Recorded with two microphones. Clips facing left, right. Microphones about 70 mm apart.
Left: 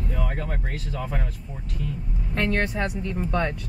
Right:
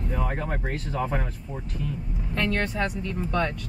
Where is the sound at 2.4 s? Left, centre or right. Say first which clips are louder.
Left 1 dB; centre.